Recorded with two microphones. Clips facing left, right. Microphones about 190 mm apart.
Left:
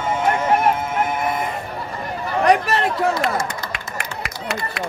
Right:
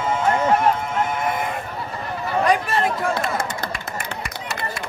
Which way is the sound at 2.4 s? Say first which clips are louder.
Left 3 dB; 70° left (ahead or behind).